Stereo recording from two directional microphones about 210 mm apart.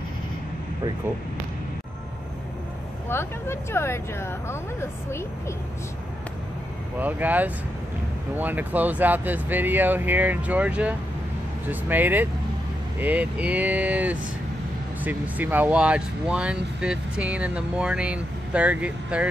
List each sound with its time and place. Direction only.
3.1 s speech: 10° left (ahead or behind)
7.0 s speech: 10° right (ahead or behind)